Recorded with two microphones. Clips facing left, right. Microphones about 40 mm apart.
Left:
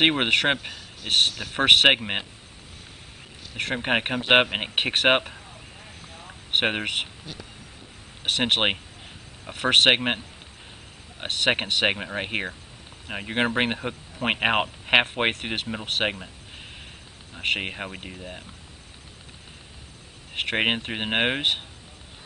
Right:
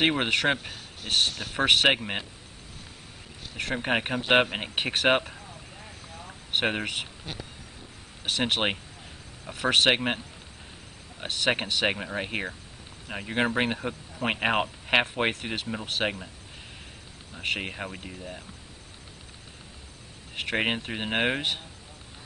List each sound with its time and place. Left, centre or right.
0.1 s speech: left
3.6 s speech: left
5.3 s a sound: centre
6.6 s speech: left
8.2 s speech: left
17.4 s speech: left
20.4 s speech: left